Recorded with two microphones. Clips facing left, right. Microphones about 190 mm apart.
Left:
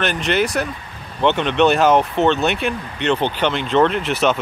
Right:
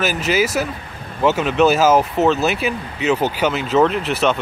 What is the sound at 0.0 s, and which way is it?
Speech, 5° right (ahead or behind).